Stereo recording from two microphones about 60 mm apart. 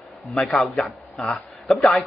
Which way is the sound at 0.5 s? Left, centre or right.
Centre.